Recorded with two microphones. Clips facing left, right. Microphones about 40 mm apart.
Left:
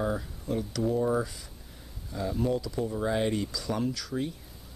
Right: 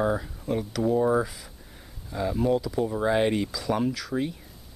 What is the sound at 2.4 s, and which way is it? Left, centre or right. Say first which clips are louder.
Speech: right 5 dB; centre.